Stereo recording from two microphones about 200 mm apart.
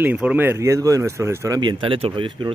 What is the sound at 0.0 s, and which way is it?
Speech, 5° right (ahead or behind).